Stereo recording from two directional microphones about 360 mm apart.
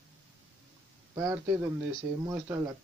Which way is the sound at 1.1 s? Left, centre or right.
Centre.